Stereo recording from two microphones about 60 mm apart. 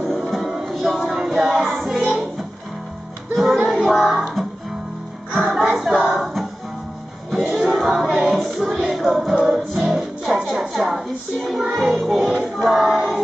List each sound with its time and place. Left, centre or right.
0.3 s music: centre
1.6 s music: centre
3.3 s music: centre
7.2 s music: centre
12.6 s female singing: centre